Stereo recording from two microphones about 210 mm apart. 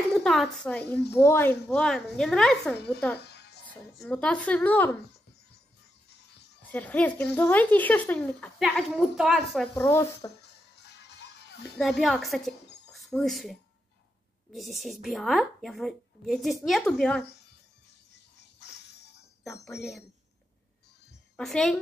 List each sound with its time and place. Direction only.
0.2 s a woman's voice: centre (ahead or behind)
3.3 s music: 50° left (ahead or behind)
3.6 s a woman's voice: 5° left (ahead or behind)
6.6 s a woman's voice: 5° left (ahead or behind)
9.8 s a woman's voice: 10° left (ahead or behind)
10.4 s music: 55° left (ahead or behind)
11.8 s a woman's voice: centre (ahead or behind)
18.6 s music: 50° left (ahead or behind)
19.6 s a woman's voice: centre (ahead or behind)
21.4 s a woman's voice: centre (ahead or behind)